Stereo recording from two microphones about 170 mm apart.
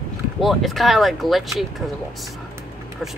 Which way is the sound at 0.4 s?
Centre (ahead or behind).